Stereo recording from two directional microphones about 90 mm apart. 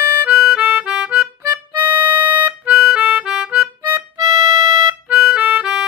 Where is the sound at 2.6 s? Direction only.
10° right (ahead or behind).